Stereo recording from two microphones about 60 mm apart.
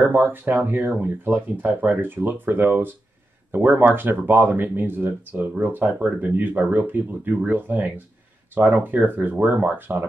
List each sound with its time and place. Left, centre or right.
0.0 s speech: right